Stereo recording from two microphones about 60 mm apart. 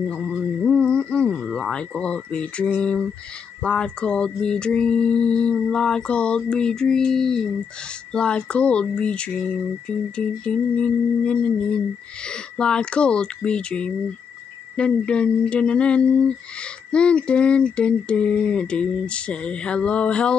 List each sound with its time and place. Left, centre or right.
0.1 s mantra: centre
0.6 s a sound: centre
3.6 s mantra: centre